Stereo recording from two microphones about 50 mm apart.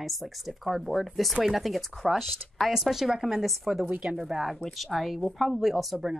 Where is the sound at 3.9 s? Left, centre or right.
Centre.